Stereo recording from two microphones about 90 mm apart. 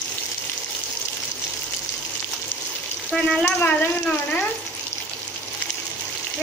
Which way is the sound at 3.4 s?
20° left (ahead or behind).